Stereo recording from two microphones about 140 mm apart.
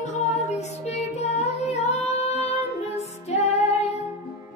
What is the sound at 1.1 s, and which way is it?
Music, 55° left (ahead or behind).